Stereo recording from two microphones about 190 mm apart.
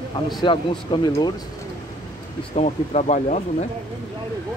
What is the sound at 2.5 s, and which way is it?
Speech, 35° left (ahead or behind).